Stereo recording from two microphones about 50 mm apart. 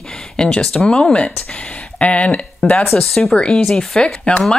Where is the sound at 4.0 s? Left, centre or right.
Left.